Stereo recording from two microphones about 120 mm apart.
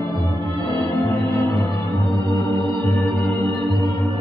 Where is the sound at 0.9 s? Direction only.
15° left (ahead or behind).